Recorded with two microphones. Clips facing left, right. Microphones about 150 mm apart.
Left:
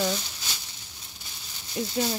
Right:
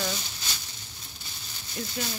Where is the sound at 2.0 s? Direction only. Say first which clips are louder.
Left 8 dB; 25° left (ahead or behind).